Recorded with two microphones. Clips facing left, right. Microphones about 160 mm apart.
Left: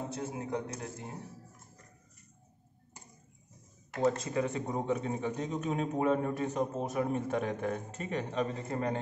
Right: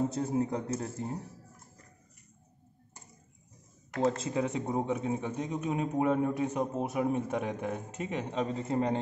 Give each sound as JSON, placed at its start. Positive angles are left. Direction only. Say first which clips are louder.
{"t": 0.3, "sound": "a man's voice", "louder": "right 6 dB", "side_deg": -35}
{"t": 4.2, "sound": "speech", "louder": "right 1 dB", "side_deg": -20}